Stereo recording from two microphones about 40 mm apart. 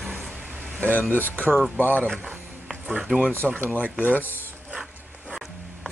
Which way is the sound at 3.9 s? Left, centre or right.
Right.